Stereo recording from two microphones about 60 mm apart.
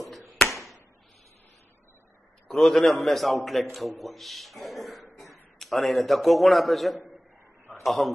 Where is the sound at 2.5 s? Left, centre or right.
Centre.